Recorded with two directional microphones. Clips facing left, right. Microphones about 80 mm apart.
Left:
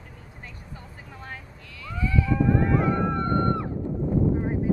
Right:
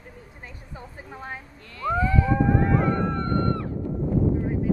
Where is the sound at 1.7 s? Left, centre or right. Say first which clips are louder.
Right 5 dB; right.